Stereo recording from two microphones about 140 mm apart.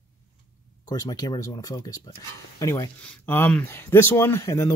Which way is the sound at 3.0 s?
10° left (ahead or behind).